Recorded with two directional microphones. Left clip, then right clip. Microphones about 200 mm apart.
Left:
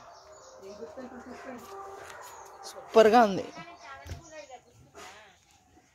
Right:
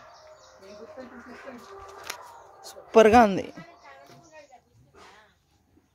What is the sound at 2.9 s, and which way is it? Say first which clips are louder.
Speech: right 3 dB; 30° right (ahead or behind).